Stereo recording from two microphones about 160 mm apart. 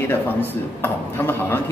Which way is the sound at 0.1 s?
15° left (ahead or behind).